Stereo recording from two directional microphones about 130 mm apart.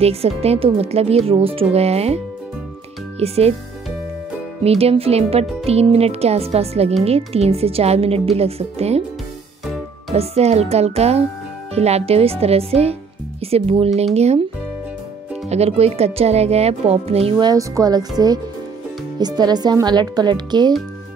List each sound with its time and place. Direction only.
0.0 s a woman's voice: 50° right (ahead or behind)
4.6 s a woman's voice: 50° right (ahead or behind)
10.1 s a woman's voice: 55° right (ahead or behind)
15.4 s a woman's voice: 55° right (ahead or behind)
17.4 s speech: 30° right (ahead or behind)